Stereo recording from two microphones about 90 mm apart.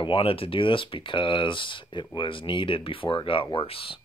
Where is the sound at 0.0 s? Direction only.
85° left.